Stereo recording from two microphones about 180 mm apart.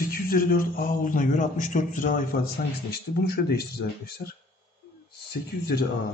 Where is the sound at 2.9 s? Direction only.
60° left (ahead or behind).